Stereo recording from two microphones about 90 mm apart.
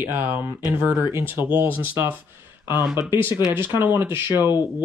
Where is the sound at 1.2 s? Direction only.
25° right (ahead or behind).